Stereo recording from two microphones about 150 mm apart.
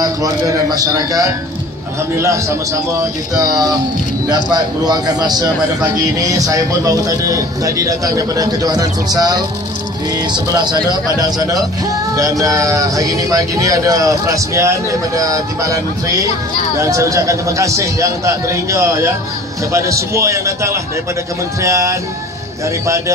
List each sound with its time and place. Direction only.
0.0 s speech: 25° right (ahead or behind)